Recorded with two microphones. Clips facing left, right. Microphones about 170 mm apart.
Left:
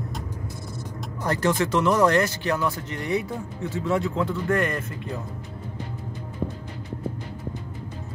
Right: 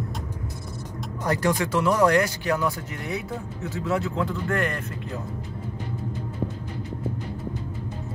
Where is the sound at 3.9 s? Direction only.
Centre (ahead or behind).